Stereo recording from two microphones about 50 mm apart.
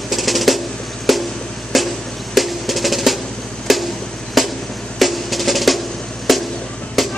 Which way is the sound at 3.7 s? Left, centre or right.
Centre.